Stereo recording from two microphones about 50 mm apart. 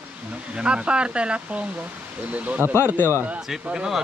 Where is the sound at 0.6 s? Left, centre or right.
Right.